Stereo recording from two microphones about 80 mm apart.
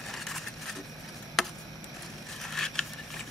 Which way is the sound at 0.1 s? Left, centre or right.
Centre.